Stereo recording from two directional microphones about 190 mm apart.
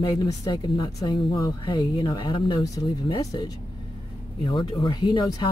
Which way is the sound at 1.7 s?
20° left (ahead or behind).